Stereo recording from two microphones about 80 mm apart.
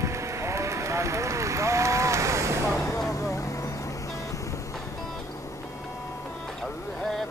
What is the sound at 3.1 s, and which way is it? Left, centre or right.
Vehicle, left.